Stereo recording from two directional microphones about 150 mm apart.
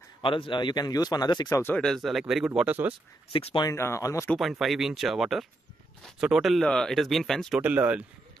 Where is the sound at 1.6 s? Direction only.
15° left (ahead or behind).